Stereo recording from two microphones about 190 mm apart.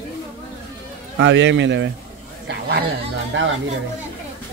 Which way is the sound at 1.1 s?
75° right (ahead or behind).